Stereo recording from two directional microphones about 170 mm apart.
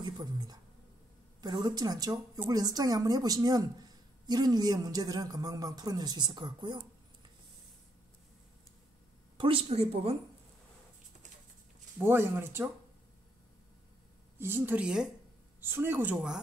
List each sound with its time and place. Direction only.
0.0 s a man's voice: 25° right (ahead or behind)
9.4 s speech: 35° right (ahead or behind)
12.0 s speech: 15° right (ahead or behind)
14.4 s speech: 10° right (ahead or behind)